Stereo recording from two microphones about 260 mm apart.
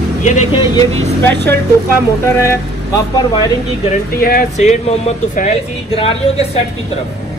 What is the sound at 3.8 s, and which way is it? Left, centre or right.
Speech, left.